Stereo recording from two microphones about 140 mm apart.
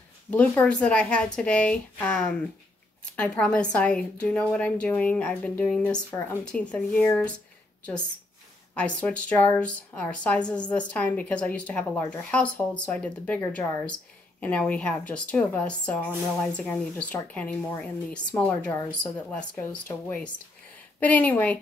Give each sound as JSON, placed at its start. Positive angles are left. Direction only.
{"t": 0.3, "sound": "a woman's voice", "side_deg": 10}